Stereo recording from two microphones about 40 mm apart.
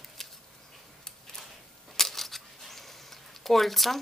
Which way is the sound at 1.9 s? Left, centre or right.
Centre.